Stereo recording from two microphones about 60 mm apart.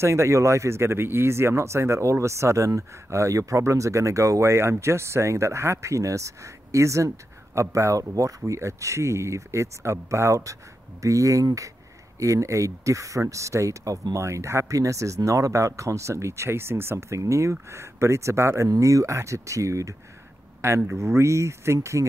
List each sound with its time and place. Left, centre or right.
0.0 s speech: right
17.2 s speech: right
18.7 s speech: right